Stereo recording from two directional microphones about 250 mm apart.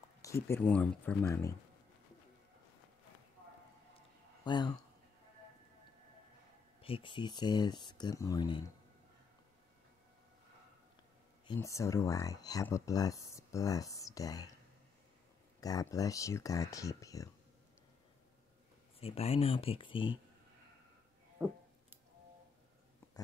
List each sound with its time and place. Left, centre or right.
0.2 s speech: centre
4.5 s speech: centre
6.8 s speech: left
11.4 s speech: centre
15.6 s speech: centre
18.9 s speech: left
21.4 s a sound: centre